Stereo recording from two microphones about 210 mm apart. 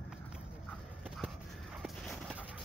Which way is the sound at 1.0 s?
5° right (ahead or behind).